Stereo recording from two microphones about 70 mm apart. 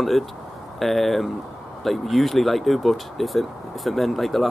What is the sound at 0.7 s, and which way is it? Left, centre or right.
Speech, centre.